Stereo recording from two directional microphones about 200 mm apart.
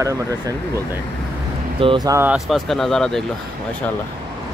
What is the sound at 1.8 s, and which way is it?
Speech, 25° right (ahead or behind).